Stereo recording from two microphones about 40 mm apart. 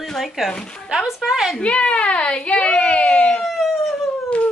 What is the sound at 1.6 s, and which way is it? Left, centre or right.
Speech, left.